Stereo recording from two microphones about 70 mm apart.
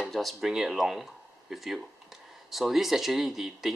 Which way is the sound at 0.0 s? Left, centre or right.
Centre.